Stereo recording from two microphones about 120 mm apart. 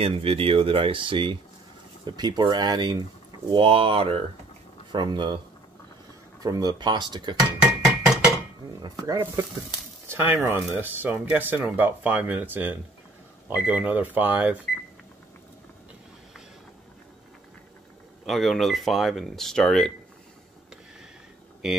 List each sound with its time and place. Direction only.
0.0 s speech: 50° right (ahead or behind); by 3.0 s 35° right (ahead or behind)
3.5 s speech: 50° right (ahead or behind)
4.9 s speech: 40° right (ahead or behind)
6.4 s speech: 30° right (ahead or behind)
7.3 s dishes: 5° right (ahead or behind)
8.8 s speech: 30° right (ahead or behind)
10.0 s speech: 15° right (ahead or behind)
18.2 s speech: centre (ahead or behind)